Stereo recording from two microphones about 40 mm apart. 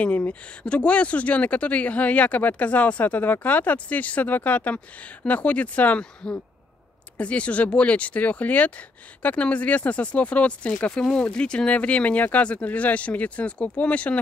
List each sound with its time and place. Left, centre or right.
0.0 s speech: left
7.2 s speech: left
11.7 s speech: left